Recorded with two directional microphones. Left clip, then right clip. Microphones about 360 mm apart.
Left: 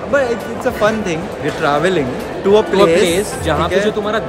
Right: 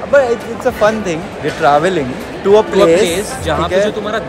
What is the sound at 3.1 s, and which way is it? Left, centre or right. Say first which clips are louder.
Speech: even; centre.